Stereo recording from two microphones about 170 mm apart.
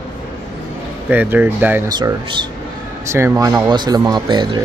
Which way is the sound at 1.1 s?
10° right (ahead or behind).